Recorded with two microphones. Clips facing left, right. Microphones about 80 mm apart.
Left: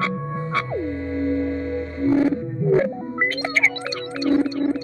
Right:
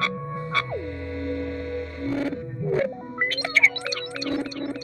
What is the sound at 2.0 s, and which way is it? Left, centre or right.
Roaring cats, left.